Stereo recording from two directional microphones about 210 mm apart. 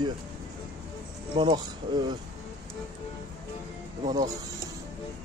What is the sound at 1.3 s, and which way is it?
Speech, 20° right (ahead or behind).